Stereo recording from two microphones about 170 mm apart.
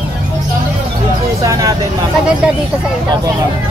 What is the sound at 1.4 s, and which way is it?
Speech, 20° right (ahead or behind).